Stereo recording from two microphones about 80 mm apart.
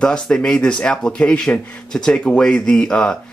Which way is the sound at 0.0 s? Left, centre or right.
Centre.